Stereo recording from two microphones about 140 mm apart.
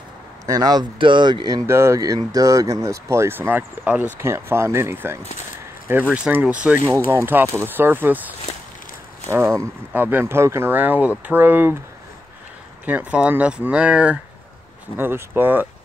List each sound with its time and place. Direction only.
0.5 s speech: 25° right (ahead or behind)
1.7 s speech: 20° right (ahead or behind)
12.8 s speech: 10° right (ahead or behind)